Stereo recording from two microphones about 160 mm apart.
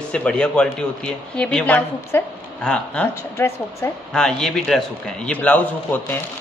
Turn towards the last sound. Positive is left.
turn(degrees=10)  # may be behind; listen again after turning